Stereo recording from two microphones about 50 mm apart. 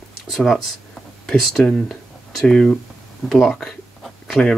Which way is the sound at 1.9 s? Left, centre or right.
Centre.